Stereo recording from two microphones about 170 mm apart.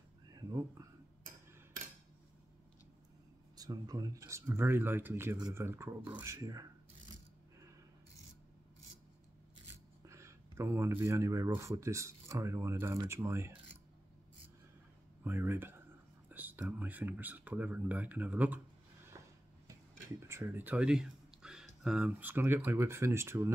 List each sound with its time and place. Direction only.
3.5 s speech: 20° right (ahead or behind)
10.0 s speech: 15° right (ahead or behind)
15.2 s speech: 15° right (ahead or behind)
19.1 s a sound: 20° right (ahead or behind)
19.7 s speech: 15° right (ahead or behind)